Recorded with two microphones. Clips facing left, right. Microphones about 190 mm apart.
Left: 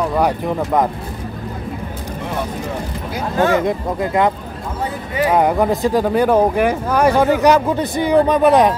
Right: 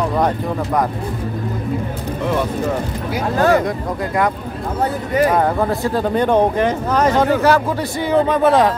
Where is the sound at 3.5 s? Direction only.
20° left (ahead or behind).